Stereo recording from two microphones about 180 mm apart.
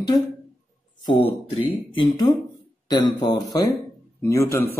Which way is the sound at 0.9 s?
25° left (ahead or behind).